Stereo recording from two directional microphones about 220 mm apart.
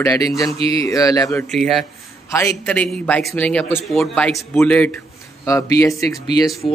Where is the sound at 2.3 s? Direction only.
15° left (ahead or behind).